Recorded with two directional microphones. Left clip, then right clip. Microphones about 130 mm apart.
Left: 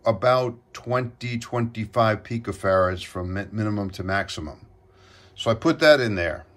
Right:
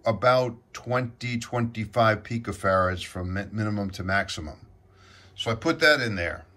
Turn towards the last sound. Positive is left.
turn(degrees=25)  # may be behind; listen again after turning